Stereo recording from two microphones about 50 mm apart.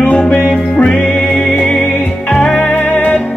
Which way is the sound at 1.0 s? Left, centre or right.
Centre.